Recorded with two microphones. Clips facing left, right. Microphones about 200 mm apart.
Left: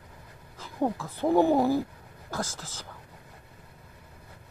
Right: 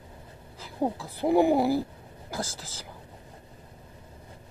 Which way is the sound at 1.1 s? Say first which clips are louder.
Right 1 dB; 15° right (ahead or behind).